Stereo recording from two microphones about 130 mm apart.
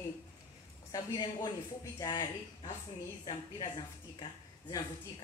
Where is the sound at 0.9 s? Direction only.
30° left (ahead or behind).